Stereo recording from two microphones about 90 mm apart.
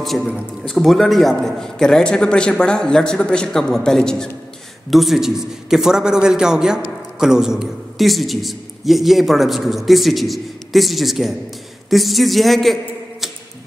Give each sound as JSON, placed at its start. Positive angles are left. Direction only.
{"t": 0.0, "sound": "a man's voice", "side_deg": 0}